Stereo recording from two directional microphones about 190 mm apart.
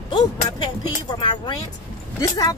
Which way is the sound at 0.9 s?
25° left (ahead or behind).